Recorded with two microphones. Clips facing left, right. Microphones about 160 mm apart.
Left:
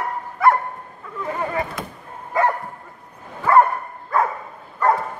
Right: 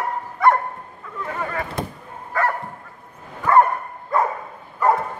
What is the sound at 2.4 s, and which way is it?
Bow-wow, 15° left (ahead or behind).